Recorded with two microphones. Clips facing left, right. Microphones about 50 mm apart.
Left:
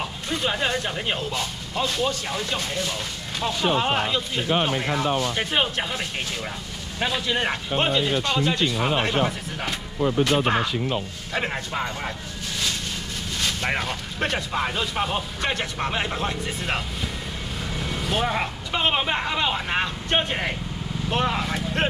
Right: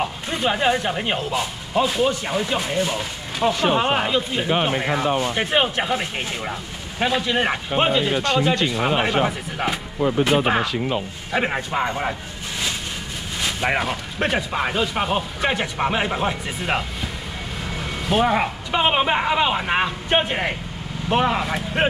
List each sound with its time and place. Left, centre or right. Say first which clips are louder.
0.0 s a man's voice: right 4 dB; centre